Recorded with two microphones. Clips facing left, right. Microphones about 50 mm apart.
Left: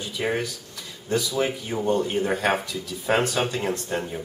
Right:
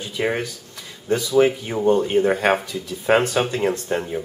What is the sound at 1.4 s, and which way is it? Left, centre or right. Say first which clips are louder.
Speech: right 7 dB; right.